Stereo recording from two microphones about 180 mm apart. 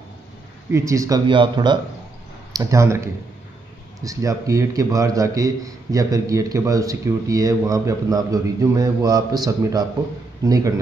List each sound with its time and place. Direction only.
0.7 s a man's voice: 15° right (ahead or behind)
4.0 s a man's voice: 20° right (ahead or behind)